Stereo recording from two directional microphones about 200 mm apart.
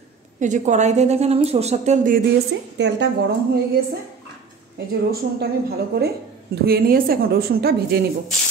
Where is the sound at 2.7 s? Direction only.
60° right (ahead or behind).